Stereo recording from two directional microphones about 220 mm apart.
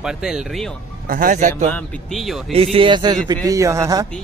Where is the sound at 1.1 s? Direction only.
35° right (ahead or behind).